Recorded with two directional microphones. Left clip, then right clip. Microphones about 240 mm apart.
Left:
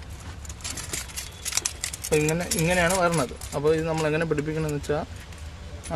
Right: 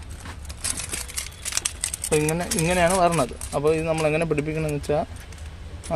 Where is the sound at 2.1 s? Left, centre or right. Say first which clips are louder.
Right 1 dB; centre.